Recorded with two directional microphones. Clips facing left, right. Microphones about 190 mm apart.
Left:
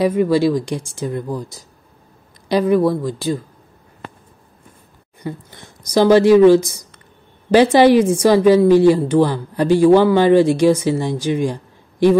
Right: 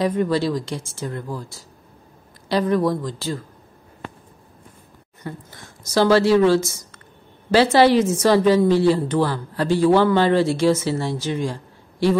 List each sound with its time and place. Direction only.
0.0 s a woman's voice: 10° left (ahead or behind)
5.2 s a woman's voice: 15° left (ahead or behind)